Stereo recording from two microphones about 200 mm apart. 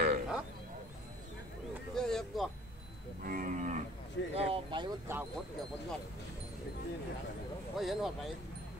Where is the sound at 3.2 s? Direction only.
45° right (ahead or behind).